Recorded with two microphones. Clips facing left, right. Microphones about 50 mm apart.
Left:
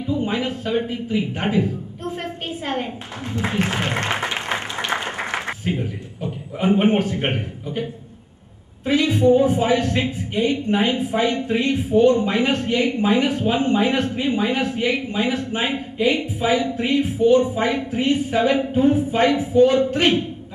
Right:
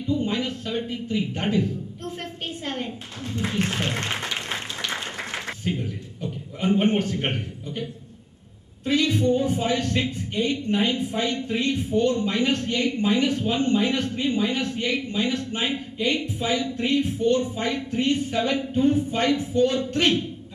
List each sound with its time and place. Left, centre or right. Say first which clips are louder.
0.0 s a man's voice: left 3 dB; centre
2.2 s a sound: left 5 dB; centre
3.7 s speech: left 4 dB; left
4.2 s applause: left 5 dB; left
5.1 s a sound: left 6 dB; left
5.7 s a man's voice: left 3 dB; centre